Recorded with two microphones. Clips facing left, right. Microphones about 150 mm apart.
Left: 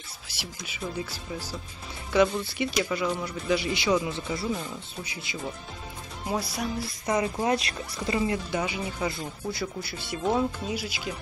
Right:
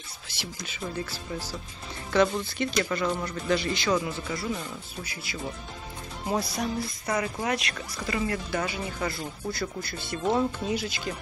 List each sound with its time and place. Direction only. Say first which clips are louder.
0.3 s a man's voice: right 2 dB; 10° left (ahead or behind)
4.1 s speech: left 1 dB; 25° left (ahead or behind)
4.5 s speech: left 2 dB; 5° left (ahead or behind)
5.0 s a man's voice: even; 20° left (ahead or behind)
6.2 s speech: right 1 dB; centre (ahead or behind)
7.1 s a man's voice: left 4 dB; 20° left (ahead or behind)